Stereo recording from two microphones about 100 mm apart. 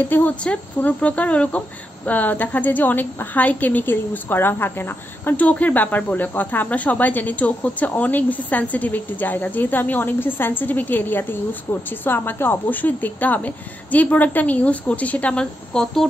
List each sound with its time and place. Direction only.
0.0 s a woman's voice: 20° left (ahead or behind)